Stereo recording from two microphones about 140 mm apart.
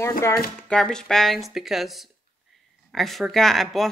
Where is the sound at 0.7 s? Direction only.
5° left (ahead or behind).